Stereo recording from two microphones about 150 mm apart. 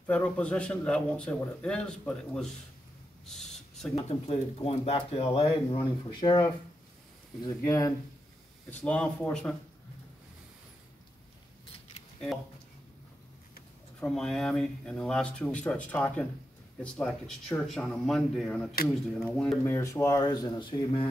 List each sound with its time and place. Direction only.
0.0 s speech: 10° left (ahead or behind)
3.3 s a sound: 5° left (ahead or behind)
3.9 s speech: 45° left (ahead or behind)
7.4 s speech: 25° left (ahead or behind)
8.6 s speech: 10° left (ahead or behind)
13.9 s speech: 5° left (ahead or behind)
19.6 s speech: 20° left (ahead or behind); by 21.1 s 35° left (ahead or behind)